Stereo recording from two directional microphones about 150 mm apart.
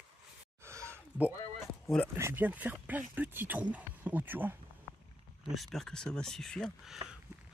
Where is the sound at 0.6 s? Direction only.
20° right (ahead or behind).